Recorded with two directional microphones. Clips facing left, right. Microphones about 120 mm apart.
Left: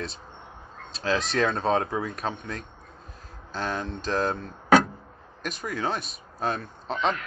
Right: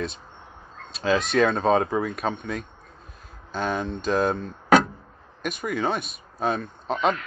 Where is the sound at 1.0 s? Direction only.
5° right (ahead or behind).